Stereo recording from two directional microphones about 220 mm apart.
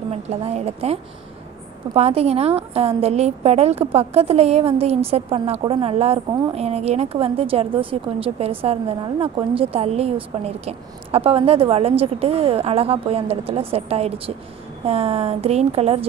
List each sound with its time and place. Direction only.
0.1 s a woman's voice: 30° right (ahead or behind)
2.0 s a woman's voice: 30° right (ahead or behind)